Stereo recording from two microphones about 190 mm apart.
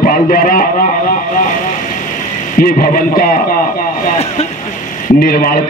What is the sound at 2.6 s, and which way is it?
Speech, 50° left (ahead or behind).